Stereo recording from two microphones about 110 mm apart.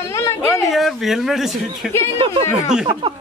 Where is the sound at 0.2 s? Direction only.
25° left (ahead or behind).